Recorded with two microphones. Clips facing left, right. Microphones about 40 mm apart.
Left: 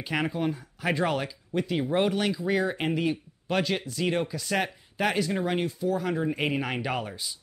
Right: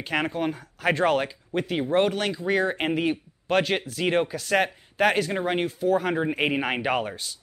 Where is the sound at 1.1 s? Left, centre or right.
Right.